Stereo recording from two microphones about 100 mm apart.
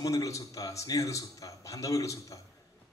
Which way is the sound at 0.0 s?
35° left (ahead or behind).